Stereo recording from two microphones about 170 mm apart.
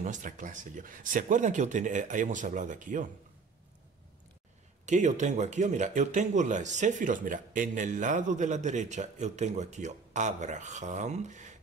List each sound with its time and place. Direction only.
0.0 s speech: 50° right (ahead or behind)
4.8 s speech: 45° right (ahead or behind)